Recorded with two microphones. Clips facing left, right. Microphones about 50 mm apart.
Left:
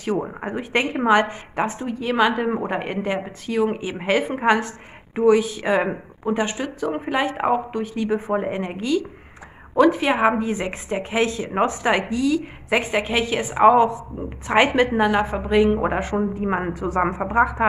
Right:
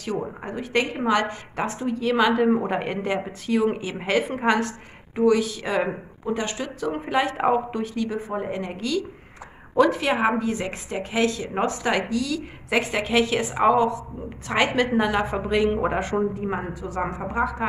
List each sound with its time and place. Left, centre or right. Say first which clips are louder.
0.0 s a woman's voice: left 4 dB; left; by 7.9 s centre
7.9 s a woman's voice: left 5 dB; left; by 13.7 s centre
13.7 s a woman's voice: left 5 dB; left
14.9 s speech: left 3 dB; centre
16.6 s a woman's voice: left 6 dB; left